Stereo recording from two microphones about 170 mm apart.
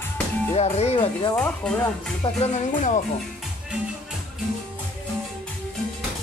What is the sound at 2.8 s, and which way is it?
Speech, 45° left (ahead or behind).